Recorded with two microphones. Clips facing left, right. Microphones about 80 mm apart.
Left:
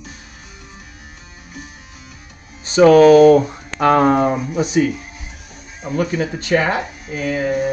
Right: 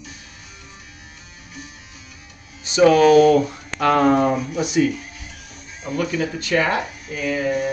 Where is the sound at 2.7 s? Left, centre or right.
Left.